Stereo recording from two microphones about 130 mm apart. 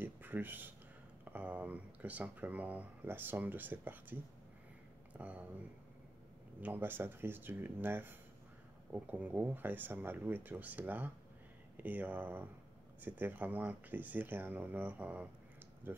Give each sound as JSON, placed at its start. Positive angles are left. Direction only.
{"t": 0.0, "sound": "a sound", "side_deg": -15}
{"t": 1.3, "sound": "speech", "side_deg": -10}
{"t": 6.6, "sound": "speech", "side_deg": -15}